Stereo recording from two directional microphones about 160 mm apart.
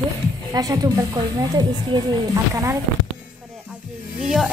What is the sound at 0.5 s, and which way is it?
Speech, 25° right (ahead or behind).